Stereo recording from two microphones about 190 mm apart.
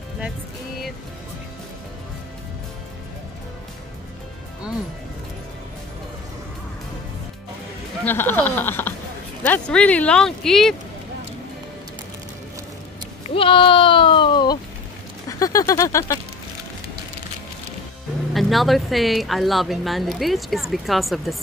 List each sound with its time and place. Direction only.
8.0 s speech: 10° left (ahead or behind)
13.3 s sheep: 25° left (ahead or behind)
15.2 s a sound: 15° left (ahead or behind)
18.3 s speech: centre (ahead or behind)